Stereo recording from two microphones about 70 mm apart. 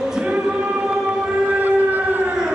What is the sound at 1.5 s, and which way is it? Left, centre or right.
Siren, right.